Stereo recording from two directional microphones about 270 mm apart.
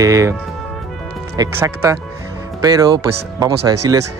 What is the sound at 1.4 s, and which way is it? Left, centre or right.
Speech, centre.